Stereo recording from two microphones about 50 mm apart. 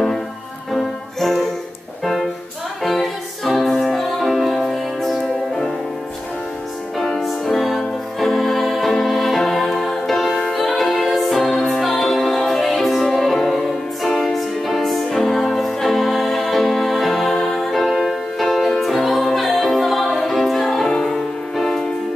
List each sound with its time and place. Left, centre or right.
0.7 s music: centre
2.8 s music: centre
7.2 s music: centre